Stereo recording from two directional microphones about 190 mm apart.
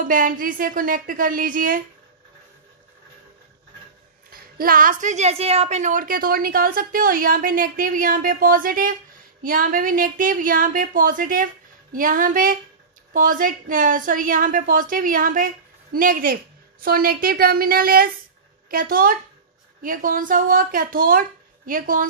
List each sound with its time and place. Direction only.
0.1 s a woman's voice: 45° right (ahead or behind)
4.3 s a woman's voice: 50° right (ahead or behind)